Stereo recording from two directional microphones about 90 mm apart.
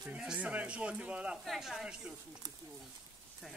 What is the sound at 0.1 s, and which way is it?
Speech, 15° right (ahead or behind).